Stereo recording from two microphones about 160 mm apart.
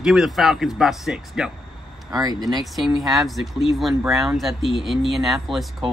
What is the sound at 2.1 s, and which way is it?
Speech, 25° right (ahead or behind).